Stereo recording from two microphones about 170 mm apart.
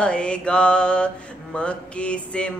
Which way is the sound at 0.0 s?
5° left (ahead or behind).